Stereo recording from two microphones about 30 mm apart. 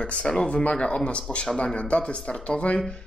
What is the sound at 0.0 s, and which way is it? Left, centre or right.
A man's voice, left.